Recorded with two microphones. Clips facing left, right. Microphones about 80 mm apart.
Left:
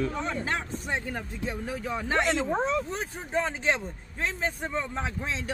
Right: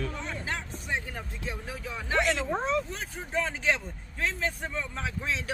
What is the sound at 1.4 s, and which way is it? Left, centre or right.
Speech, left.